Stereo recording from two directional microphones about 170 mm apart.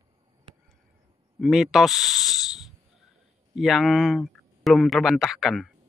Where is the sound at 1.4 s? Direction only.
Centre (ahead or behind).